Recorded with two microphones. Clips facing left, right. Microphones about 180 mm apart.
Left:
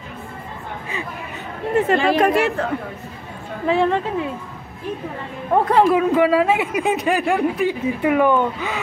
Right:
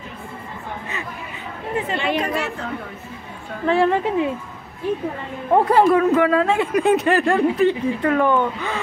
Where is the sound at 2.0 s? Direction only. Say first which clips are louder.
Left 5 dB; 40° left (ahead or behind).